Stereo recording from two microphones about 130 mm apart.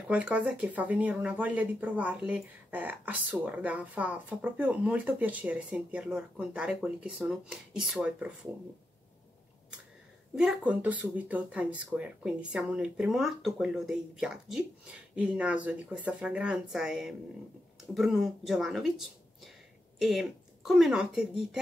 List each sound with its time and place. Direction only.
0.1 s speech: 10° right (ahead or behind)
10.3 s speech: 5° right (ahead or behind)